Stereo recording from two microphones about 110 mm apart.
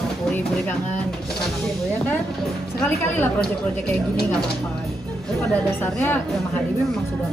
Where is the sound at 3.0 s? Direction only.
20° left (ahead or behind).